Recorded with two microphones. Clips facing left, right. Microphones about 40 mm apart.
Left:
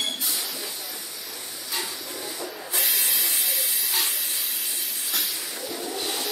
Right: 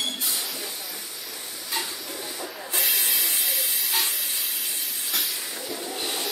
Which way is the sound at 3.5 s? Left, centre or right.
Centre.